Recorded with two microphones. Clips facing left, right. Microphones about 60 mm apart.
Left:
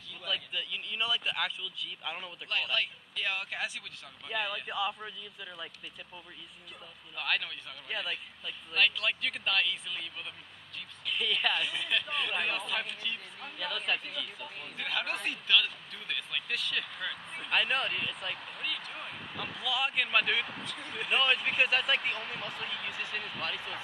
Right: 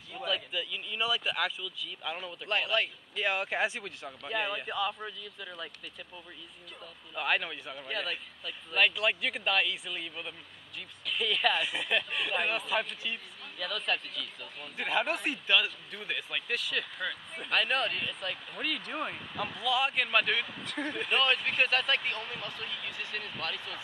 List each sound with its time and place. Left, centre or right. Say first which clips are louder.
0.2 s speech: right 3 dB; centre
2.4 s speech: right 3 dB; right
4.3 s speech: right 2 dB; centre
4.6 s speech: right 1 dB; centre
7.2 s speech: right 3 dB; centre
7.9 s speech: right 1 dB; centre
8.7 s speech: right 2 dB; centre
11.1 s speech: right 2 dB; centre
11.5 s speech: right 2 dB; centre
12.1 s speech: right 1 dB; centre
13.6 s speech: right 1 dB; centre
14.8 s speech: right 4 dB; centre
20.6 s speech: right 6 dB; right
20.9 s speech: even; centre